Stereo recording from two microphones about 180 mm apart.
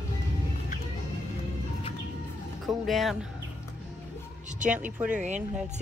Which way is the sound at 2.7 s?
Centre (ahead or behind).